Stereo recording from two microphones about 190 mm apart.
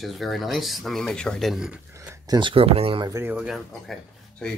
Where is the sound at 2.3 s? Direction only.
25° right (ahead or behind).